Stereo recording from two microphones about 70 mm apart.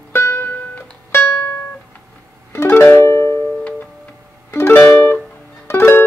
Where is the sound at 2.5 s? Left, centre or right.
Left.